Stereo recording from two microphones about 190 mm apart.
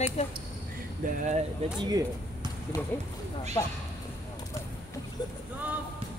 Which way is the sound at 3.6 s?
20° left (ahead or behind).